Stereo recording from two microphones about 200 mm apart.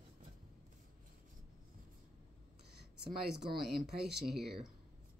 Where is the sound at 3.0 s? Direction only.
Centre (ahead or behind).